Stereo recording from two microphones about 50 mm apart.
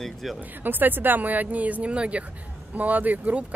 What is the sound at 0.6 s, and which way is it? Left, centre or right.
Speech, right.